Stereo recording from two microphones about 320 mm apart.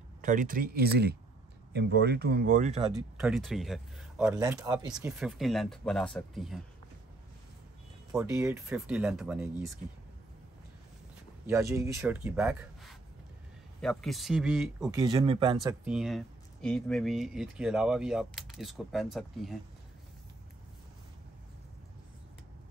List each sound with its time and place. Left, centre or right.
0.2 s speech: right
2.9 s speech: centre
5.2 s speech: centre
8.1 s speech: centre
11.4 s speech: centre
15.0 s speech: centre
15.6 s speech: centre